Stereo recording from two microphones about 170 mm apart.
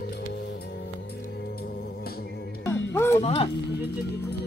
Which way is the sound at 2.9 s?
15° left (ahead or behind).